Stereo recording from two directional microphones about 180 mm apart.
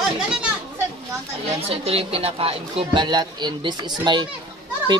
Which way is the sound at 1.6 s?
35° right (ahead or behind).